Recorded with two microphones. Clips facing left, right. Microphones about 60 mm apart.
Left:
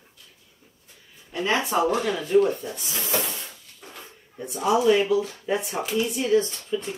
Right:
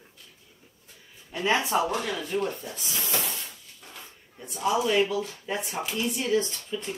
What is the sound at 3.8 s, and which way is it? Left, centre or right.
Dog, left.